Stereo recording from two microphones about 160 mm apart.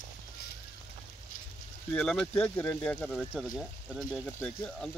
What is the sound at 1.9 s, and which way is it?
Speech, 5° left (ahead or behind).